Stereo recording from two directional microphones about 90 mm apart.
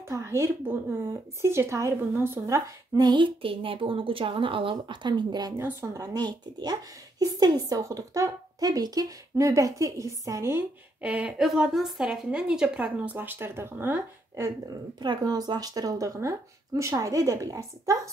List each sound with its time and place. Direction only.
0.1 s speech: 35° right (ahead or behind)
3.0 s a woman's voice: 55° right (ahead or behind)
7.8 s speech: 40° right (ahead or behind)
11.0 s a woman's voice: 15° right (ahead or behind)
11.4 s a woman's voice: centre (ahead or behind); by 14.5 s 30° right (ahead or behind)
14.7 s speech: 50° right (ahead or behind)